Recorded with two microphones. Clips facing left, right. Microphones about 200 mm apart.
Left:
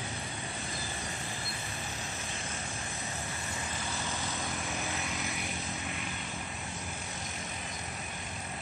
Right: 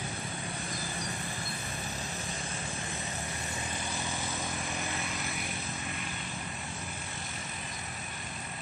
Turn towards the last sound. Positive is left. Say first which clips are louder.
# left 1 dB
turn(degrees=0)  # may be behind; listen again after turning